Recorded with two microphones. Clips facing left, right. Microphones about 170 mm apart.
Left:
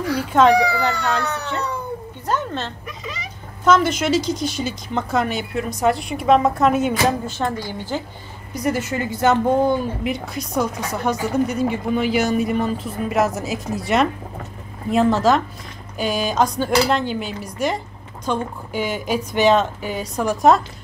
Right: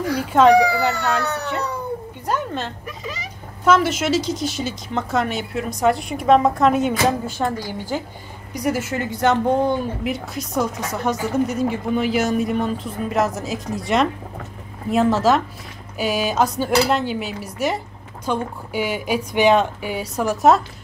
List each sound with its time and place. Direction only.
0.0 s a sound: 45° right (ahead or behind)
1.2 s baby cry: 40° right (ahead or behind)
2.2 s dishes: 10° right (ahead or behind)
3.6 s speech: 5° right (ahead or behind)
7.2 s dishes: 10° right (ahead or behind)
8.5 s speech: 10° right (ahead or behind)
16.0 s dishes: 5° right (ahead or behind)